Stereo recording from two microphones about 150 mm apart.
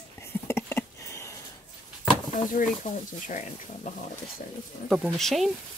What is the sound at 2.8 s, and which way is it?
Speech, 60° left (ahead or behind).